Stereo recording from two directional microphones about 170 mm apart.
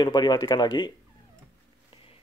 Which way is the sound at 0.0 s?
25° left (ahead or behind).